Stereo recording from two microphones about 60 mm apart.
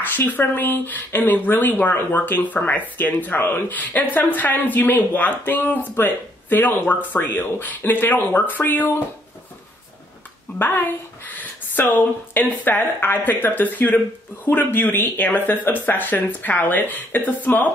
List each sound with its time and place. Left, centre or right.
0.0 s speech: left
10.6 s speech: left